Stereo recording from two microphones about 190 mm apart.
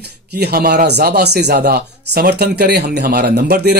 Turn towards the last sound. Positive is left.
turn(degrees=-60)  # may be behind; listen again after turning